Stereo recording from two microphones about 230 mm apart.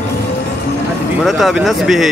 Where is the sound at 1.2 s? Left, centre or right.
Centre.